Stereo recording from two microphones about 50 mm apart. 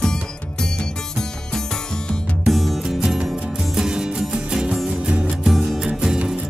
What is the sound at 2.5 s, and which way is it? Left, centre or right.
Music, centre.